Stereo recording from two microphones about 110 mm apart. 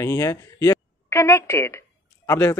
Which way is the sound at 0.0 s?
30° left (ahead or behind).